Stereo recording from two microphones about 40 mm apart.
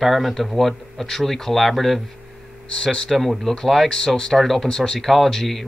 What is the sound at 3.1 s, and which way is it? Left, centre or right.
Speech, centre.